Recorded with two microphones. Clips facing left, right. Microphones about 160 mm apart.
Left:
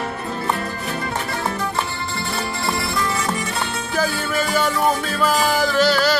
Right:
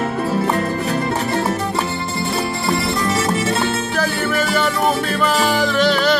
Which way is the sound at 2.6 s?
20° right (ahead or behind).